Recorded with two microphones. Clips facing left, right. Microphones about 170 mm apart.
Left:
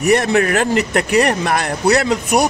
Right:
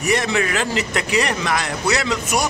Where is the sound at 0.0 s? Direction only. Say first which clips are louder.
Left 6 dB; 55° left (ahead or behind).